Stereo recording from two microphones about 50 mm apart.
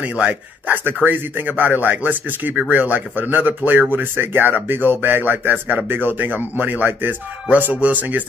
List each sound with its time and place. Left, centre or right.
0.0 s speech: right